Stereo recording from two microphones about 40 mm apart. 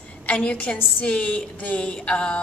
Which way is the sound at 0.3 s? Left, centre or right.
Left.